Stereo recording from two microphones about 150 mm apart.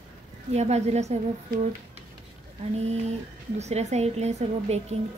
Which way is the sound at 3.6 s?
45° right (ahead or behind).